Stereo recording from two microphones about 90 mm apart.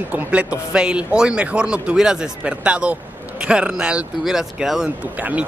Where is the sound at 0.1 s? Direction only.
15° right (ahead or behind).